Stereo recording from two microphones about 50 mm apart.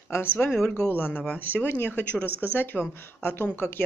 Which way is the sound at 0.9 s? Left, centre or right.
Left.